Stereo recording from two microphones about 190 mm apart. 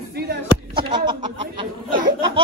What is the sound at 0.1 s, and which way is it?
Music, 55° right (ahead or behind).